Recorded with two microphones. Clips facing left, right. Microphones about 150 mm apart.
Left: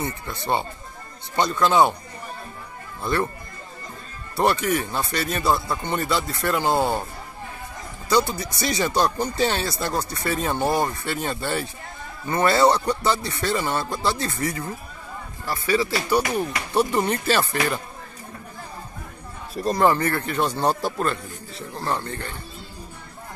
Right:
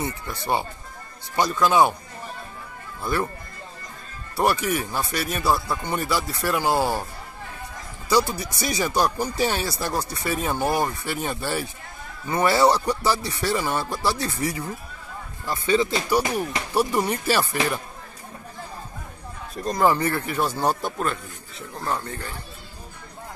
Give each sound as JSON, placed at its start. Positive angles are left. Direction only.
{"t": 1.3, "sound": "speech", "side_deg": -10}
{"t": 3.0, "sound": "speech", "side_deg": -5}
{"t": 4.4, "sound": "speech", "side_deg": -10}
{"t": 6.7, "sound": "speech", "side_deg": 20}
{"t": 8.4, "sound": "speech", "side_deg": -15}
{"t": 19.5, "sound": "speech", "side_deg": 5}
{"t": 19.9, "sound": "speech", "side_deg": -15}